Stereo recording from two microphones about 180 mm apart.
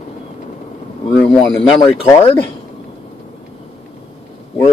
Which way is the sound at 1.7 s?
30° left (ahead or behind).